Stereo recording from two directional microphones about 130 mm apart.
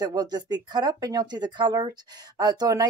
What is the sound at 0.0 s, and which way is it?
Speech, 30° right (ahead or behind).